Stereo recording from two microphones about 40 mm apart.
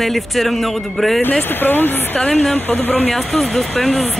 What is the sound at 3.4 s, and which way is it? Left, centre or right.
Speech, centre.